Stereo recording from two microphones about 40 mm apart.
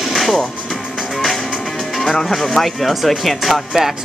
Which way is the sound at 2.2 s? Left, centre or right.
Centre.